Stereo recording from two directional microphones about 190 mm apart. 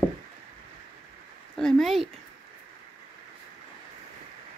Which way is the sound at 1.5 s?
Centre (ahead or behind).